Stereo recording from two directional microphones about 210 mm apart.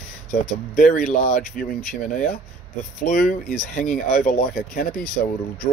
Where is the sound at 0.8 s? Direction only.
40° left (ahead or behind).